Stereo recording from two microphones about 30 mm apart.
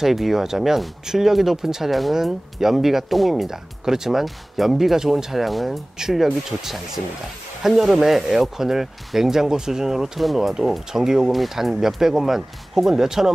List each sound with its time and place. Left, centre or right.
0.0 s speech: centre
1.9 s speech: centre
3.4 s speech: centre
6.0 s speech: right
7.6 s speech: centre
10.9 s speech: centre
11.2 s speech: centre